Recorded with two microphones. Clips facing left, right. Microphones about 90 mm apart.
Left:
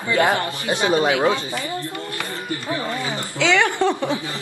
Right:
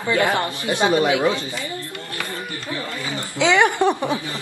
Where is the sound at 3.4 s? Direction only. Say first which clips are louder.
Right 2 dB; 20° right (ahead or behind).